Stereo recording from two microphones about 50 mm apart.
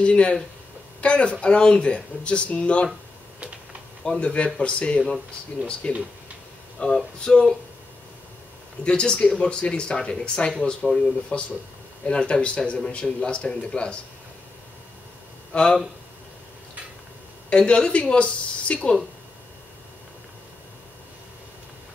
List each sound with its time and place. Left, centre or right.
0.0 s speech: left
4.0 s speech: centre
7.2 s speech: centre
8.8 s speech: centre
15.5 s speech: centre
17.5 s speech: left